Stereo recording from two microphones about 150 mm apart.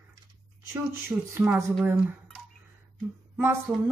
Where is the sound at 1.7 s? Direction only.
5° right (ahead or behind).